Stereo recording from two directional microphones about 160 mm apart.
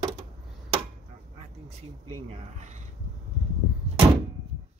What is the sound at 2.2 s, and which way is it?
Speech, 40° right (ahead or behind).